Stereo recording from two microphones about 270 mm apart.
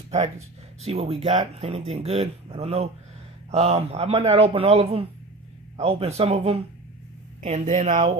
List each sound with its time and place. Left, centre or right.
0.8 s speech: right